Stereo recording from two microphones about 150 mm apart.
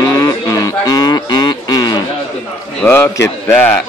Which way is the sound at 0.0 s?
25° left (ahead or behind).